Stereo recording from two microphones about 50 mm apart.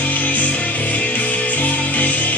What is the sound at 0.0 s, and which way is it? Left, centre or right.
Music, left.